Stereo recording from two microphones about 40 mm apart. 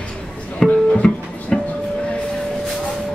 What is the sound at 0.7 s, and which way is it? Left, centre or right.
Music, left.